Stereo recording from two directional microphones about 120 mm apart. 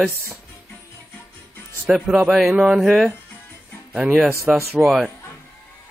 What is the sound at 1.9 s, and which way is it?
A man's voice, 5° right (ahead or behind).